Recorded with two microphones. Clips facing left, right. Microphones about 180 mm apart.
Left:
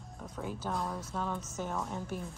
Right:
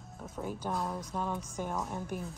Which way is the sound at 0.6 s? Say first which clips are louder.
Right 1 dB; 10° right (ahead or behind).